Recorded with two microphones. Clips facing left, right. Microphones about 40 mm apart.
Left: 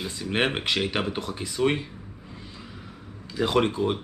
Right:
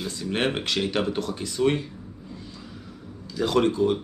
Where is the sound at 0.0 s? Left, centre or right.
Centre.